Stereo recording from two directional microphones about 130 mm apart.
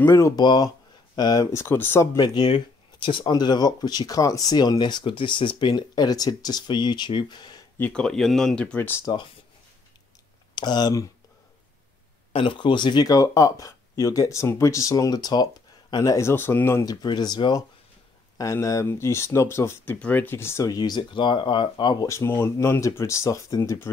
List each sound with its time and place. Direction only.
0.0 s speech: 20° left (ahead or behind)
0.4 s speech: 35° left (ahead or behind); by 2.0 s 15° left (ahead or behind)
2.1 s speech: 35° left (ahead or behind)
7.7 s speech: 10° left (ahead or behind)
9.0 s speech: 35° left (ahead or behind)
10.5 s speech: 35° left (ahead or behind)
12.3 s speech: 45° left (ahead or behind); by 16.8 s 20° left (ahead or behind)
16.8 s speech: 30° left (ahead or behind)
22.0 s speech: 20° left (ahead or behind)